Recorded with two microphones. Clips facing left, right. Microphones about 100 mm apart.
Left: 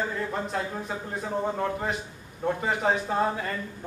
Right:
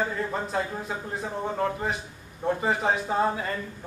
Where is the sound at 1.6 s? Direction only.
5° right (ahead or behind).